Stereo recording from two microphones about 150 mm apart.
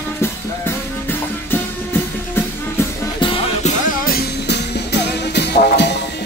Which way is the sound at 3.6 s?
65° left (ahead or behind).